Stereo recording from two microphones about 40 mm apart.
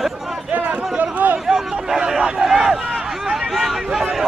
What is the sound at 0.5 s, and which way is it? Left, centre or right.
Chatter, right.